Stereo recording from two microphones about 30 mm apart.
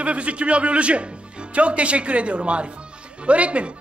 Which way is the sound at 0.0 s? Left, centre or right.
Right.